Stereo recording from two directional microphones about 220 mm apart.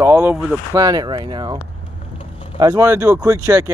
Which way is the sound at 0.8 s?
15° right (ahead or behind).